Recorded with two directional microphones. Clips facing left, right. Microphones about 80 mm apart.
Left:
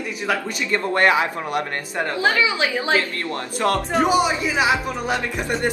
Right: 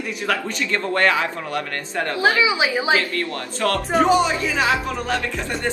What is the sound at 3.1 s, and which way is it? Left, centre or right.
A man's voice, left.